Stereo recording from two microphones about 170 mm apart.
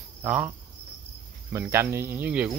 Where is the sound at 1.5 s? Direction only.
15° right (ahead or behind).